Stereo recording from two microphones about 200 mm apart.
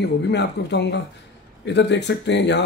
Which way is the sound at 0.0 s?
60° left (ahead or behind).